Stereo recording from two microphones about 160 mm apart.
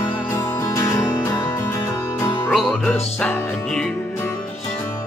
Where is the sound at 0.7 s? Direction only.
20° left (ahead or behind).